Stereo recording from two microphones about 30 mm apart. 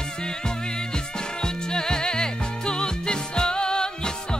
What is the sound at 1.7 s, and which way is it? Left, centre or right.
Music, left.